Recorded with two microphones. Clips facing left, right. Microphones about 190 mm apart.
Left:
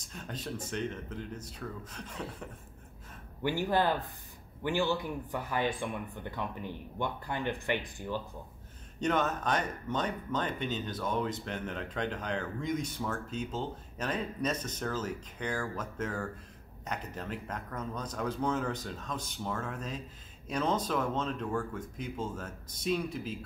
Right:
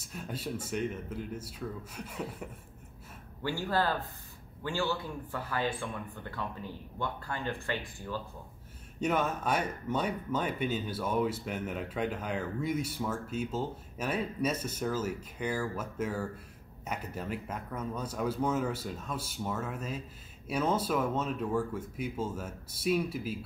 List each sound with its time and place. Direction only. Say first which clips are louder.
0.0 s speech: right 2 dB; 10° right (ahead or behind)
3.4 s speech: left 2 dB; 20° left (ahead or behind)
9.0 s speech: even; 10° right (ahead or behind)